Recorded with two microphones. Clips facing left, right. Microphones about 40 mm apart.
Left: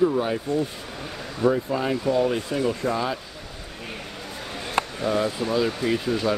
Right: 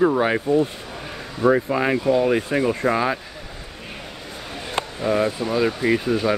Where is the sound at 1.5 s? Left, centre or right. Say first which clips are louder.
Right 5 dB; right.